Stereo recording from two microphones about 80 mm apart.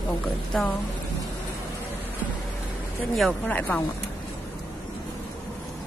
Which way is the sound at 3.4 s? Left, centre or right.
Centre.